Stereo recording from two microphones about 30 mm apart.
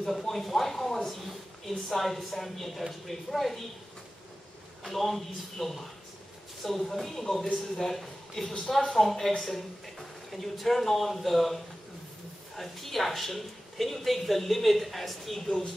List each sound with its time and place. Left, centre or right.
0.1 s a woman's voice: centre
4.8 s a woman's voice: centre
15.4 s speech: centre